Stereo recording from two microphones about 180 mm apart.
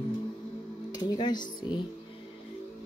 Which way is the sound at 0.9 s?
20° left (ahead or behind).